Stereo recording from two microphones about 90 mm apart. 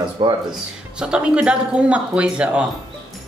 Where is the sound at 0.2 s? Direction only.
60° right (ahead or behind).